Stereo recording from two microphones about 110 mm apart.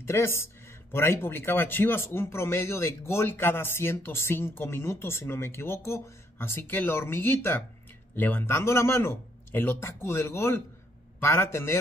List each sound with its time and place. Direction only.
0.0 s speech: 25° left (ahead or behind)